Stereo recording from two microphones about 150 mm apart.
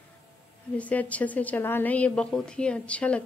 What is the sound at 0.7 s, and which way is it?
A woman's voice, 10° left (ahead or behind).